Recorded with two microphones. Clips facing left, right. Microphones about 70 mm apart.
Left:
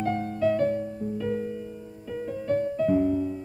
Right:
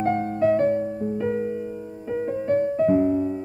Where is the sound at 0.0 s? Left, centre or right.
Right.